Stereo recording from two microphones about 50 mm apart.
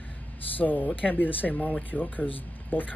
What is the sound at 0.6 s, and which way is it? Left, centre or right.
Speech, left.